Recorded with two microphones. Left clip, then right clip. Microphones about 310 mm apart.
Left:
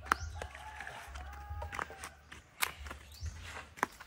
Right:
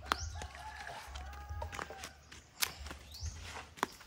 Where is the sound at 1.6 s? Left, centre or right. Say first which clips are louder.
Left 3 dB; centre.